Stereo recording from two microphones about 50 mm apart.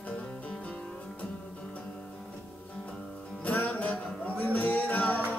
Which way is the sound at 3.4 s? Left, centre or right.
Left.